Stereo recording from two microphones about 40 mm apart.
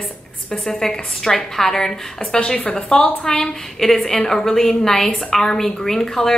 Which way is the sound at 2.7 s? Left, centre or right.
Left.